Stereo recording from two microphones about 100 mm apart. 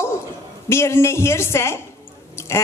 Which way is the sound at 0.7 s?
25° left (ahead or behind).